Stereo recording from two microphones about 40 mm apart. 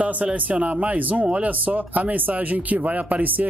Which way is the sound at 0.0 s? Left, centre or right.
Right.